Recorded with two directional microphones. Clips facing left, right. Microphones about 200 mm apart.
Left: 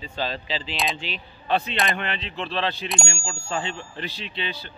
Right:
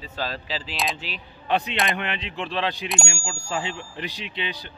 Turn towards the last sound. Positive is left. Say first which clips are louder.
# even
turn(degrees=-15)  # may be behind; listen again after turning